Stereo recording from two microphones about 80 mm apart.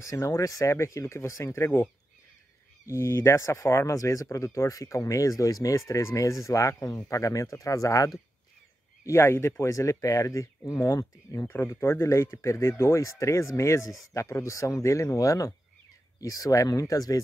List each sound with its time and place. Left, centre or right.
0.0 s speech: left
2.9 s speech: left
9.0 s speech: left